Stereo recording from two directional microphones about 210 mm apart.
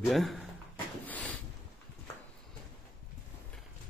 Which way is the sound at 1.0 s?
5° left (ahead or behind).